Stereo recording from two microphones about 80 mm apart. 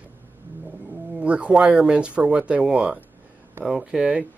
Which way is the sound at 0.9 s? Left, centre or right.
Centre.